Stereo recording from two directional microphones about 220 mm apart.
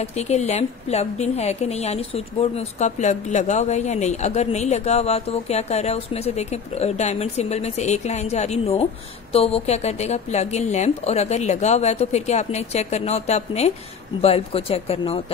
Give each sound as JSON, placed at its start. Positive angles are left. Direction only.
{"t": 0.0, "sound": "a woman's voice", "side_deg": 30}